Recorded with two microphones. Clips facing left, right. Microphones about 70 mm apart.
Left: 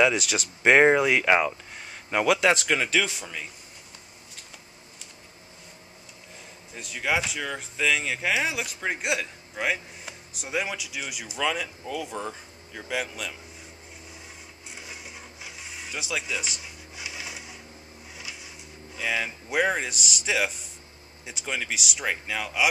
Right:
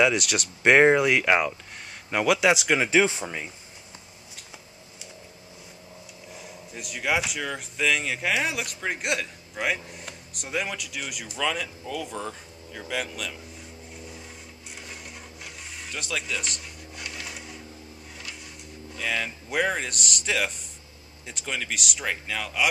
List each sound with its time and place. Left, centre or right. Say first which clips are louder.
0.0 s speech: even; centre
3.0 s speech: right 5 dB; right
6.7 s speech: even; centre
15.4 s a sound: left 1 dB; centre
18.9 s speech: left 1 dB; centre